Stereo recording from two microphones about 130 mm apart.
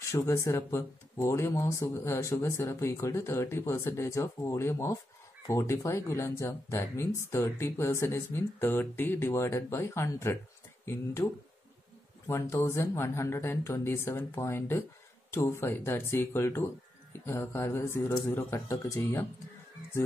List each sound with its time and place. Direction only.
0.0 s speech: 20° left (ahead or behind)
12.3 s speech: 20° left (ahead or behind)